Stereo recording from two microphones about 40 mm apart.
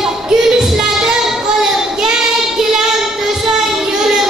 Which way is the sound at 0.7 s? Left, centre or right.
Centre.